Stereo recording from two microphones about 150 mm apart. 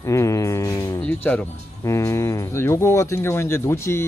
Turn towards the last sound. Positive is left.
turn(degrees=15)  # may be behind; listen again after turning